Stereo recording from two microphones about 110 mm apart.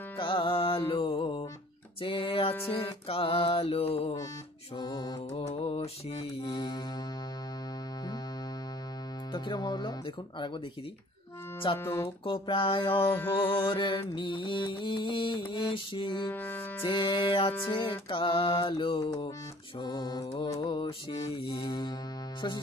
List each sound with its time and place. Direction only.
0.2 s music: 50° left (ahead or behind); by 4.1 s 65° left (ahead or behind)
4.7 s mantra: 40° left (ahead or behind)
5.3 s music: 75° left (ahead or behind)
6.4 s mantra: 40° left (ahead or behind)
9.3 s speech: 45° left (ahead or behind)
11.8 s speech: 20° left (ahead or behind)
12.3 s mantra: 50° left (ahead or behind)
13.1 s speech: 20° left (ahead or behind)
13.4 s mantra: 50° left (ahead or behind)
16.3 s music: 15° left (ahead or behind)
16.8 s mantra: 50° left (ahead or behind)
19.0 s mantra: 40° left (ahead or behind)
20.3 s music: 55° left (ahead or behind)
21.6 s mantra: 40° left (ahead or behind)